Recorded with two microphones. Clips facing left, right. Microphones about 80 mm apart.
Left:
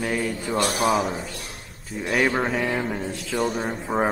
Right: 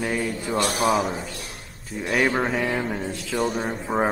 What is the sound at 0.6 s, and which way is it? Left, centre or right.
Speech, right.